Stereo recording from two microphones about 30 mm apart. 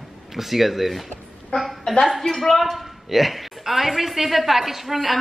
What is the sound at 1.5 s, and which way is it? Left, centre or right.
Speech, left.